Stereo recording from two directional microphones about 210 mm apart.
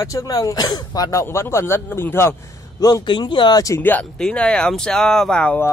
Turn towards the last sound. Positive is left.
turn(degrees=5)  # may be behind; listen again after turning